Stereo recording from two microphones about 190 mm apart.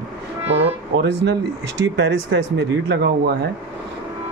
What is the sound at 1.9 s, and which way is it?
Speech, 75° right (ahead or behind).